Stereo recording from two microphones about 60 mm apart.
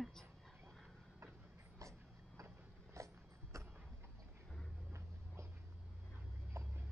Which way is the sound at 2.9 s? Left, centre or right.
Right.